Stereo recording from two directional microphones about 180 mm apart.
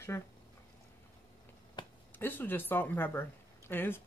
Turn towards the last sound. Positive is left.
turn(degrees=10)  # may be behind; listen again after turning